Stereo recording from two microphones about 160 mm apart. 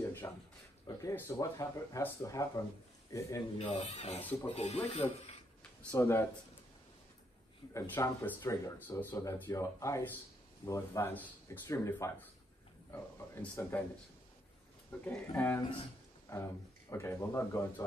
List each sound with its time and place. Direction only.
0.2 s speech: 15° left (ahead or behind)
3.5 s speech: 40° left (ahead or behind)
5.8 s speech: 10° left (ahead or behind)
7.7 s speech: 20° left (ahead or behind)
14.9 s speech: 10° left (ahead or behind)
16.9 s speech: 15° left (ahead or behind)